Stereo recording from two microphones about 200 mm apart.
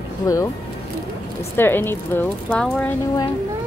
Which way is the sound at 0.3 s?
15° left (ahead or behind).